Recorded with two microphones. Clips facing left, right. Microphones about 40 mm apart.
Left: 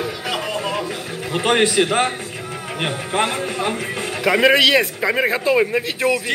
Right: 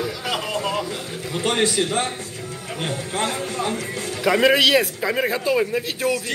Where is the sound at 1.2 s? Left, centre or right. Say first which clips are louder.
Left 4 dB; left.